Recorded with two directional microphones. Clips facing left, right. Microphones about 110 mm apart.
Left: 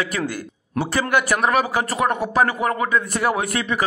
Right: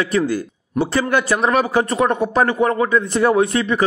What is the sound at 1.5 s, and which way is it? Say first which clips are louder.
A man's voice: right 3 dB; 30° right (ahead or behind).